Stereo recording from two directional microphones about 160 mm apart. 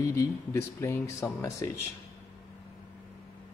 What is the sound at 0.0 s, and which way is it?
Speech, 20° left (ahead or behind).